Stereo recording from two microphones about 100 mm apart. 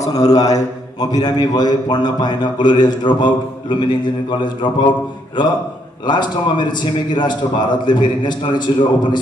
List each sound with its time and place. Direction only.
0.1 s mantra: 40° left (ahead or behind)
1.0 s a man's voice: 40° left (ahead or behind)
6.0 s a man's voice: 50° left (ahead or behind)